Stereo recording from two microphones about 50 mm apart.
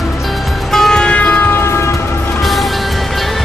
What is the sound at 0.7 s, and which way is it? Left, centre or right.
Music, centre.